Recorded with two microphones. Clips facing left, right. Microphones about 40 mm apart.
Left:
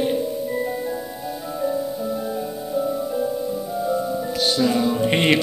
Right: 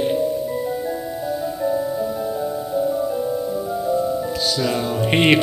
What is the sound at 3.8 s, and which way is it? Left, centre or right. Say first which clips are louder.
Music: right 2 dB; centre.